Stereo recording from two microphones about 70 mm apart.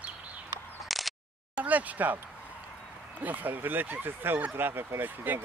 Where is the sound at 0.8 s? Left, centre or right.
Centre.